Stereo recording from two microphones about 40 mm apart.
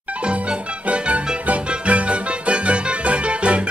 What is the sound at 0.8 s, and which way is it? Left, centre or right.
Music, right.